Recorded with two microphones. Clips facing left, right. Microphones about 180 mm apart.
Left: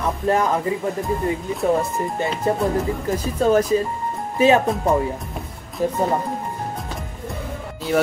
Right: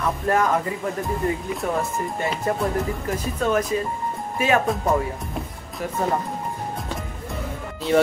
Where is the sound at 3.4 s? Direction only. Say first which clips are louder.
Left 5 dB; 35° left (ahead or behind).